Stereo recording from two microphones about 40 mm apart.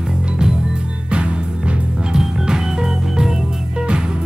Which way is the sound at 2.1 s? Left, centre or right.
Centre.